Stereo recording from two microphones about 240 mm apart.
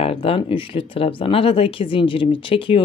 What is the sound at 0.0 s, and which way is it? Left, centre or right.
Speech, left.